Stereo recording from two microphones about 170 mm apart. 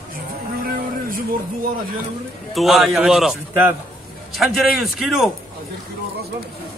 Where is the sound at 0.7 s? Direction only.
55° right (ahead or behind).